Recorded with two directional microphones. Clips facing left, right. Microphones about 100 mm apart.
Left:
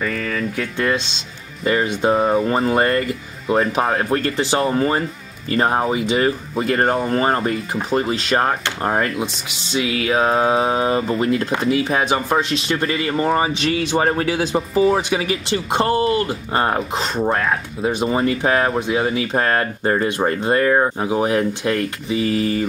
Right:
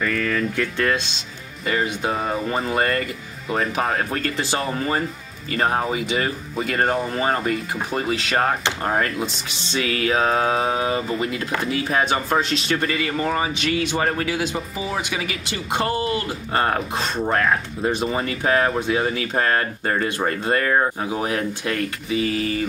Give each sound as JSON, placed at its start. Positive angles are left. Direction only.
{"t": 0.0, "sound": "speech", "side_deg": 10}
{"t": 1.6, "sound": "speech", "side_deg": 35}
{"t": 7.9, "sound": "speech", "side_deg": 20}
{"t": 9.7, "sound": "speech", "side_deg": 15}
{"t": 10.6, "sound": "speech", "side_deg": 30}
{"t": 11.7, "sound": "speech", "side_deg": 15}
{"t": 12.8, "sound": "speech", "side_deg": 30}
{"t": 17.3, "sound": "speech", "side_deg": 5}
{"t": 18.0, "sound": "speech", "side_deg": 30}